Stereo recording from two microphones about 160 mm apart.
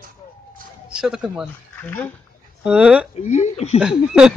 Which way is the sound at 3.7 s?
5° right (ahead or behind).